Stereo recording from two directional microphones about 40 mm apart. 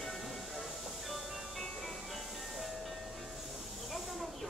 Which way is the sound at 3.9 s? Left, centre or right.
Centre.